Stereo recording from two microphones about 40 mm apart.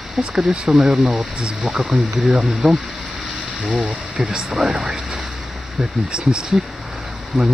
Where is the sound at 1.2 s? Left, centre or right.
Right.